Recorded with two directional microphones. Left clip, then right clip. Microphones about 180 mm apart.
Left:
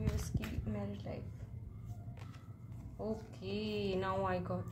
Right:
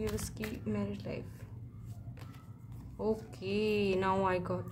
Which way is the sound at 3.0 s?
35° right (ahead or behind).